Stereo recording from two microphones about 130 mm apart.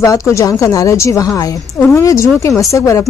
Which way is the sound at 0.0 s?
25° left (ahead or behind).